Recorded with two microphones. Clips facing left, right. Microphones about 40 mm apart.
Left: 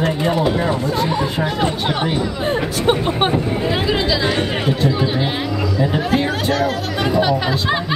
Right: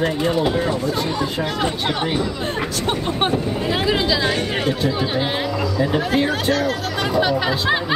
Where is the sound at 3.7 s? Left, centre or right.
Centre.